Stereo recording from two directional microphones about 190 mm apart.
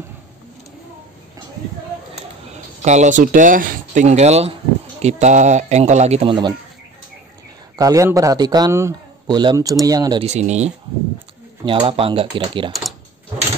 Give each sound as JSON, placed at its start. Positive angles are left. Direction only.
{"t": 2.8, "sound": "speech", "side_deg": -40}
{"t": 7.7, "sound": "a man's voice", "side_deg": -15}
{"t": 10.2, "sound": "speech", "side_deg": -35}
{"t": 11.6, "sound": "a man's voice", "side_deg": -25}